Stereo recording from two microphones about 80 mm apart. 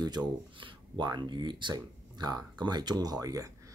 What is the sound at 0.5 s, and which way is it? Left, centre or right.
Speech, right.